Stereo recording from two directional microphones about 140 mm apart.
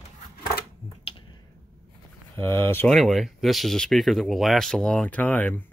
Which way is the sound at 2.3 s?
15° left (ahead or behind).